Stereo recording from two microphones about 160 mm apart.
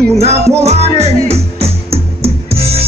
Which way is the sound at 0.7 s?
40° right (ahead or behind).